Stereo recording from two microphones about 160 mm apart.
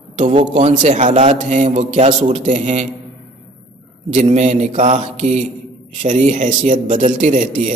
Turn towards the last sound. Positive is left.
turn(degrees=-50)  # may be behind; listen again after turning